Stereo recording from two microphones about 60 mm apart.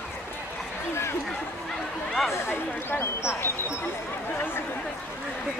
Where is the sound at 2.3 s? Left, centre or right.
Left.